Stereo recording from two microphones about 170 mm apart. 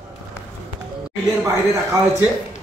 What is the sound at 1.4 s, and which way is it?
Speech, 15° right (ahead or behind).